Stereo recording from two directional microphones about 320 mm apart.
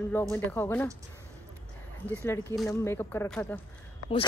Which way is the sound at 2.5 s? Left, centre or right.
Centre.